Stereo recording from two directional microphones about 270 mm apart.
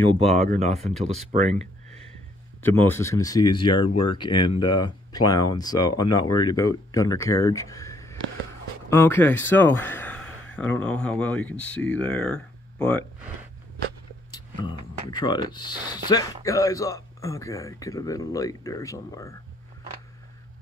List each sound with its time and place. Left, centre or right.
0.1 s speech: right
2.6 s speech: centre
3.9 s speech: left
4.2 s speech: centre
14.6 s speech: centre